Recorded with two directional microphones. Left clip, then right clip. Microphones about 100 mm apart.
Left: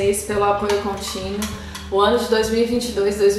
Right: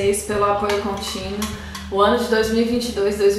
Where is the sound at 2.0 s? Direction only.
15° left (ahead or behind).